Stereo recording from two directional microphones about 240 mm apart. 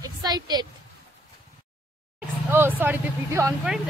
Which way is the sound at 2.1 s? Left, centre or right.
Centre.